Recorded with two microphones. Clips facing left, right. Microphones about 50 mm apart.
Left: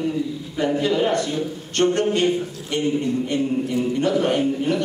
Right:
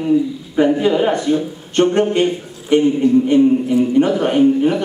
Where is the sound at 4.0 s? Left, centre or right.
Right.